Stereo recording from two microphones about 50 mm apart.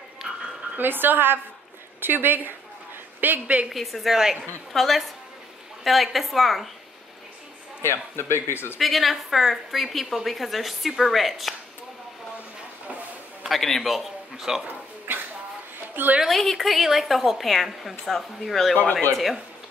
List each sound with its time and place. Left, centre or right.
0.2 s frog: right
0.7 s a woman's voice: right
3.7 s a woman's voice: centre
7.8 s speech: left
8.7 s a woman's voice: centre
13.5 s a man's voice: centre
14.7 s a sound: right
15.9 s a woman's voice: right
16.3 s a woman's voice: centre